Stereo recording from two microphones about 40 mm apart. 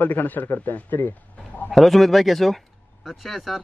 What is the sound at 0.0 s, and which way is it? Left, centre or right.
A man's voice, left.